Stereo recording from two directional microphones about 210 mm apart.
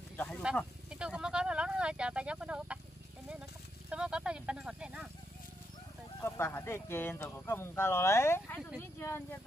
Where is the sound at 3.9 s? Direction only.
5° right (ahead or behind).